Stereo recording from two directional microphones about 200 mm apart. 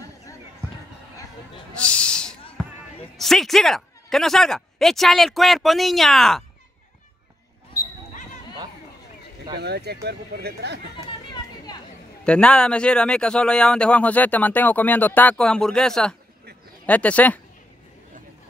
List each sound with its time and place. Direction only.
1.8 s a sound: 5° left (ahead or behind)
2.6 s basketball bounce: 5° left (ahead or behind)
3.2 s speech: centre (ahead or behind)
9.6 s speech: 55° right (ahead or behind)
12.3 s speech: 5° left (ahead or behind)